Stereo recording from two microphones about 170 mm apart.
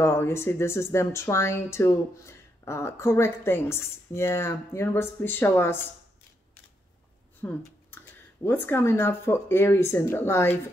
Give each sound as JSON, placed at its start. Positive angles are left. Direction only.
{"t": 0.0, "sound": "speech", "side_deg": 15}
{"t": 7.4, "sound": "speech", "side_deg": 10}